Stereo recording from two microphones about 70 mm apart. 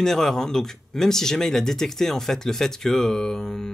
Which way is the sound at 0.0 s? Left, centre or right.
Centre.